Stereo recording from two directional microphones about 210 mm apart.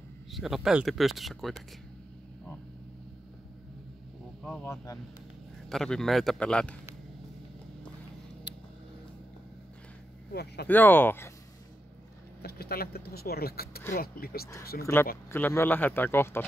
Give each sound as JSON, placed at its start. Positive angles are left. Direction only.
{"t": 0.3, "sound": "speech", "side_deg": 0}
{"t": 4.5, "sound": "speech", "side_deg": 5}
{"t": 10.3, "sound": "speech", "side_deg": 50}
{"t": 10.7, "sound": "speech", "side_deg": 10}
{"t": 12.4, "sound": "speech", "side_deg": 50}
{"t": 14.8, "sound": "speech", "side_deg": 10}